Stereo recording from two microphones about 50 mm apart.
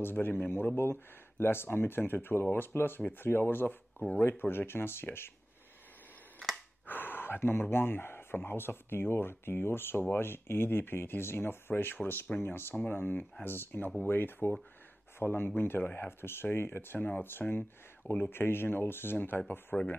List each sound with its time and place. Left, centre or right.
0.0 s speech: left
6.9 s gasp: left
7.7 s speech: left